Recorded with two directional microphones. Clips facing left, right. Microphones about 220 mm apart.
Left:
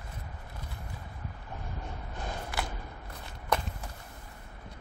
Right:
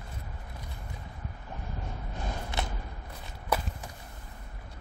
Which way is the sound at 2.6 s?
20° right (ahead or behind).